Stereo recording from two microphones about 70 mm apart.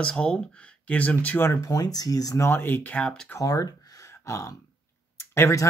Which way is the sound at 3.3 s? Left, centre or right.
Left.